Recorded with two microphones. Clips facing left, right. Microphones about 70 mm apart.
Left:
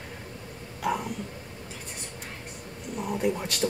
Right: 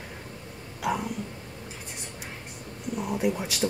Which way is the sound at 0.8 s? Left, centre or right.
Centre.